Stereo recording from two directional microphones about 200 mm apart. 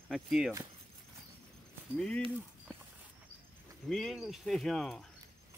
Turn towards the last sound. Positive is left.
turn(degrees=0)  # may be behind; listen again after turning